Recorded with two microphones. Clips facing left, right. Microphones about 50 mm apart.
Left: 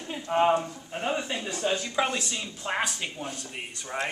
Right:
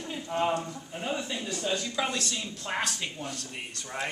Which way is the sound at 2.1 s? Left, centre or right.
Centre.